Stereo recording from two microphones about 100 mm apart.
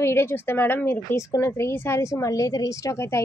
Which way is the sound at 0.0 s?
25° left (ahead or behind).